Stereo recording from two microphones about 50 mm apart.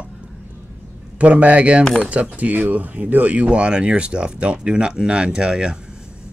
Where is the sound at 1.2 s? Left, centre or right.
Right.